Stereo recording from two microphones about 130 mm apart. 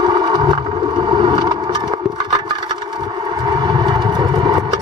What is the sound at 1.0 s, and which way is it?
Vehicle, 40° right (ahead or behind).